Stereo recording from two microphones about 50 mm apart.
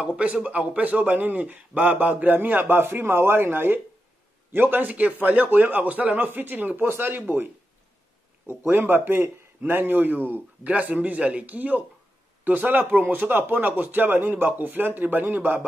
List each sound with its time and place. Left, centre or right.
0.0 s a man's voice: right
8.5 s a man's voice: right
10.6 s a man's voice: right